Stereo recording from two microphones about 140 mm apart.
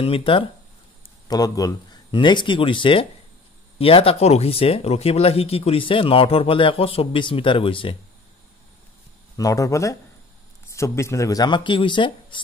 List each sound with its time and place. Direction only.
0.0 s speech: 40° left (ahead or behind)
1.2 s speech: 25° left (ahead or behind)
9.4 s speech: 25° left (ahead or behind)